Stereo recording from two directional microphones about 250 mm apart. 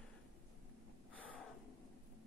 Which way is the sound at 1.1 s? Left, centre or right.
Centre.